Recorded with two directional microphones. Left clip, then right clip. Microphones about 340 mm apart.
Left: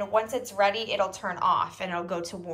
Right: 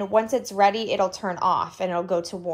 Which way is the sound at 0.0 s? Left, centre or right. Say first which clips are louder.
Right 5 dB; centre.